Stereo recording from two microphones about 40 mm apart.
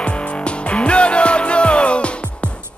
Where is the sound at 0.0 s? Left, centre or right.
Left.